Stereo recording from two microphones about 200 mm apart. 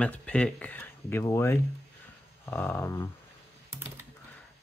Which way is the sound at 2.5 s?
10° left (ahead or behind).